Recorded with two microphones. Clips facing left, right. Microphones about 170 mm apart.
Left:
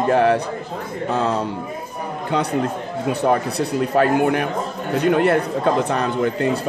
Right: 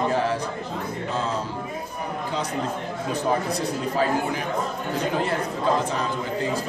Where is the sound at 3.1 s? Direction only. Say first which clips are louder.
Left 5 dB; 65° left (ahead or behind).